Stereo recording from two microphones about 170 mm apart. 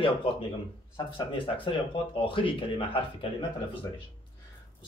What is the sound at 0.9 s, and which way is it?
Speech, 30° left (ahead or behind).